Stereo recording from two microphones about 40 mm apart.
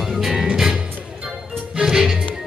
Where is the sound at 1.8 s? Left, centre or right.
Centre.